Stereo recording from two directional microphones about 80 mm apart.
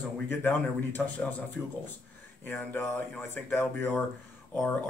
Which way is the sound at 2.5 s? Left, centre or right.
Left.